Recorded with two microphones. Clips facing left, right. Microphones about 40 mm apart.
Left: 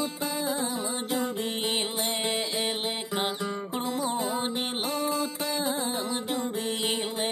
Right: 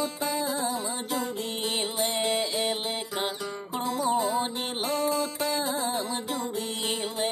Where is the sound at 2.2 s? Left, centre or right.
Centre.